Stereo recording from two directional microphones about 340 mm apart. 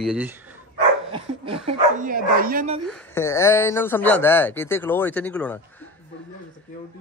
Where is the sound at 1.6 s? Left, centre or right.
Right.